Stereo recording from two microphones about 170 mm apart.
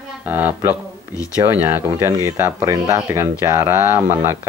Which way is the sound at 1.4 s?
10° right (ahead or behind).